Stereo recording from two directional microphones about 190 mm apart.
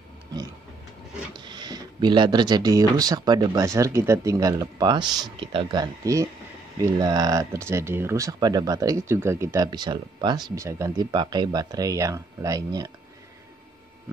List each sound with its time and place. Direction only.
1.3 s speech: 25° right (ahead or behind)